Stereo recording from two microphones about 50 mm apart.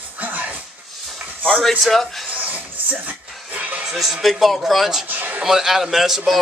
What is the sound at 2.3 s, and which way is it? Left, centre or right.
Music, right.